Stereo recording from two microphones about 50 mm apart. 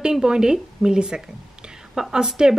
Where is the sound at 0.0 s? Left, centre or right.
Centre.